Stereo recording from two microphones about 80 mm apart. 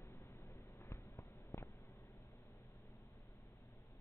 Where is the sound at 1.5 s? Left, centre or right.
Left.